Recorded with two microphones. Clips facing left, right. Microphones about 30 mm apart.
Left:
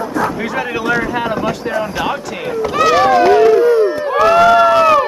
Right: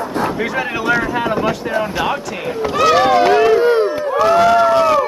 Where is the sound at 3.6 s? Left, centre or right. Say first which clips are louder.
Left 2 dB; right.